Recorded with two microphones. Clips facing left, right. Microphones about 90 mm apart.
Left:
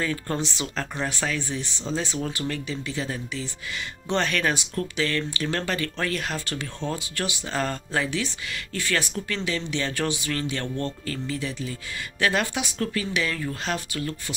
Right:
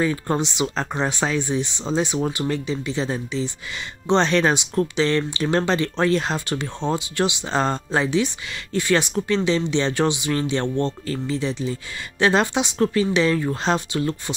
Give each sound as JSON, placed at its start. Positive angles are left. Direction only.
{"t": 0.0, "sound": "speech", "side_deg": -20}